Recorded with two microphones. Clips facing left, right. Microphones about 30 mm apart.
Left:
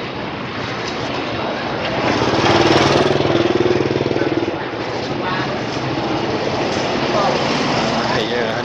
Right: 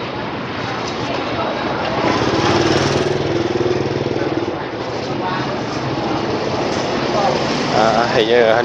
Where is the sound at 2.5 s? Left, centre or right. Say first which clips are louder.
Left 3 dB; left; by 8.2 s centre.